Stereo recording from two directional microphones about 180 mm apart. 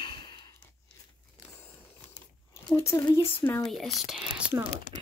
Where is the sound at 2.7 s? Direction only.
15° left (ahead or behind).